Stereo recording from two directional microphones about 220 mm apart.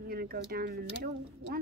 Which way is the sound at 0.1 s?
45° right (ahead or behind).